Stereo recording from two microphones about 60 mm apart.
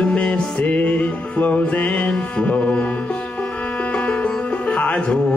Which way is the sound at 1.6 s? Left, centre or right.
Left.